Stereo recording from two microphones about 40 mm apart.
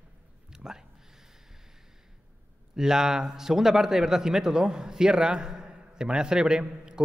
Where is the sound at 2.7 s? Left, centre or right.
Centre.